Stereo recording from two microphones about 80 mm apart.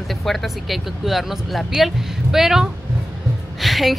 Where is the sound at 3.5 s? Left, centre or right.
Centre.